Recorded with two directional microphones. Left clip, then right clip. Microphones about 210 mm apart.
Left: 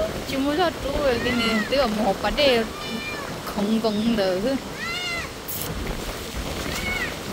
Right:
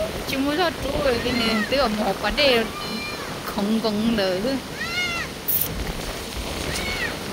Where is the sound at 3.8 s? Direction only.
10° left (ahead or behind).